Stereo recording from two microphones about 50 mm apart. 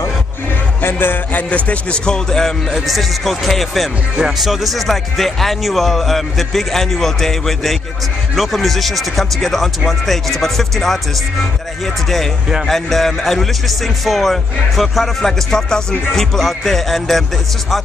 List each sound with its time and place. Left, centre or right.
0.8 s music: left
1.5 s a man's voice: left
2.0 s speech: centre
2.7 s speech: centre
15.5 s speech: centre